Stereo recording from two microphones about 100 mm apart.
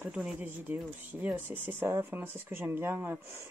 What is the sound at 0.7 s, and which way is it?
Speech, 20° right (ahead or behind).